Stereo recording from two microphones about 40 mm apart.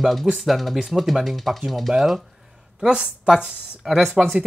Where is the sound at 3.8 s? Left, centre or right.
Centre.